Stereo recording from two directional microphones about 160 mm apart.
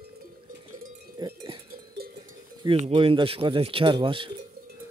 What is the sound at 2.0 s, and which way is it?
Cowbell, 85° right.